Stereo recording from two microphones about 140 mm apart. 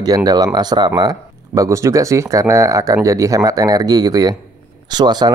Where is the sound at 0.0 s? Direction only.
25° right (ahead or behind).